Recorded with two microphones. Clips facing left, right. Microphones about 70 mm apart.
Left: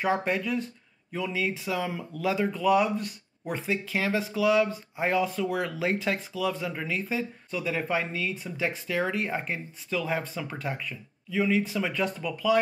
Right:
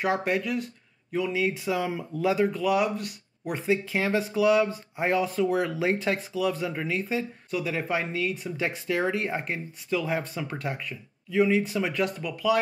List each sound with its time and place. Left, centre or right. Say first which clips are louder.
0.0 s speech: right 1 dB; centre
10.3 s speech: right 1 dB; centre